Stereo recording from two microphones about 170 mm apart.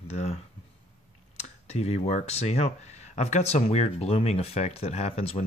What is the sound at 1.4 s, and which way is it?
Speech, 40° left (ahead or behind).